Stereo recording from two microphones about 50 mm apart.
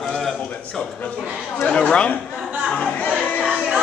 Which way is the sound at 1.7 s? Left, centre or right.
Centre.